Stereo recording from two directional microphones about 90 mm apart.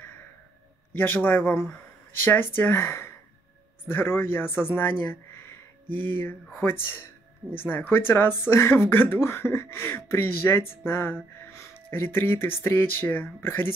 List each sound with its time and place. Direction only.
0.9 s speech: 20° left (ahead or behind)